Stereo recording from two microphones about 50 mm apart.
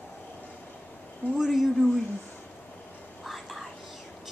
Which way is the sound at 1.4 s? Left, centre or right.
Centre.